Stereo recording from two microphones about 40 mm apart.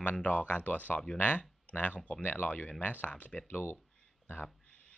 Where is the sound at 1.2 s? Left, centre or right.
Left.